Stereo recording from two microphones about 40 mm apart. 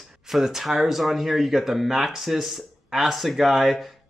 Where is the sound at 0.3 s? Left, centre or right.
Centre.